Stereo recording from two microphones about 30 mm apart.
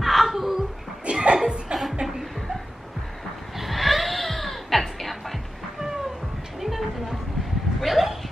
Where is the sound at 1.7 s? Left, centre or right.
Right.